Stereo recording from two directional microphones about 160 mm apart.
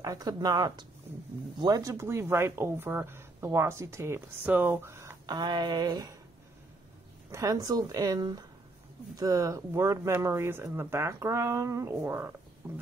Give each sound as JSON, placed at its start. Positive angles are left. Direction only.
{"t": 0.0, "sound": "speech", "side_deg": -20}
{"t": 7.2, "sound": "speech", "side_deg": -20}